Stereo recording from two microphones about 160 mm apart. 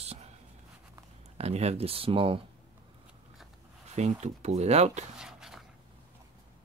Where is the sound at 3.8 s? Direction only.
45° right (ahead or behind).